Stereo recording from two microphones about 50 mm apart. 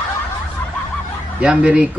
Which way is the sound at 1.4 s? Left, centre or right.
Right.